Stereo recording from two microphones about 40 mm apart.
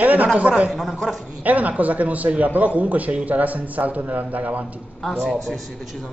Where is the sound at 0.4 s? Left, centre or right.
Right.